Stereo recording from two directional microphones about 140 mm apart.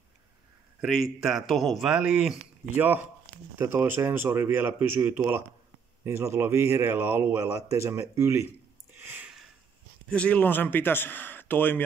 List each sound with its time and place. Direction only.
0.7 s speech: centre (ahead or behind); by 8.5 s 20° right (ahead or behind)
9.0 s a sound: 15° right (ahead or behind)
10.0 s speech: 10° left (ahead or behind)